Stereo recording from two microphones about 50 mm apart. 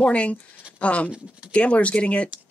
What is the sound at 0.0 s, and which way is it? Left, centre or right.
Speech, left.